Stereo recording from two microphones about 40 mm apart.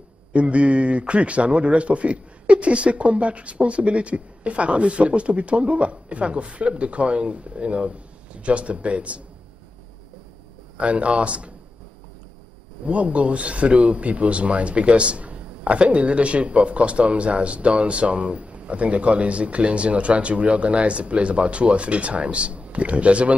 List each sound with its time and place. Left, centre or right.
0.3 s a man's voice: right
10.8 s a man's voice: right
12.8 s a man's voice: right